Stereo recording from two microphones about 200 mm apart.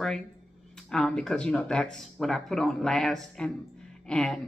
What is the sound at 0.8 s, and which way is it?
Speech, centre (ahead or behind).